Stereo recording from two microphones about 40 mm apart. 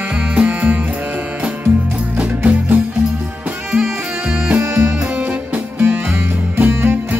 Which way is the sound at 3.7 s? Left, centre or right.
Right.